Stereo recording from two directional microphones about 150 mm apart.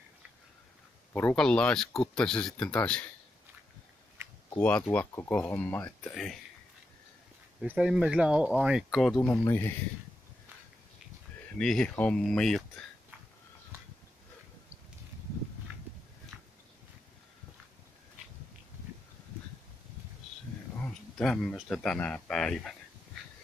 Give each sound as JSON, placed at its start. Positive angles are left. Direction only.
{"t": 1.1, "sound": "speech", "side_deg": 5}
{"t": 4.2, "sound": "a sound", "side_deg": -15}
{"t": 4.6, "sound": "speech", "side_deg": 10}
{"t": 7.6, "sound": "speech", "side_deg": -5}
{"t": 9.3, "sound": "speech", "side_deg": 20}
{"t": 11.4, "sound": "speech", "side_deg": 5}
{"t": 15.7, "sound": "horse", "side_deg": -15}
{"t": 16.3, "sound": "a sound", "side_deg": -15}
{"t": 20.7, "sound": "speech", "side_deg": 5}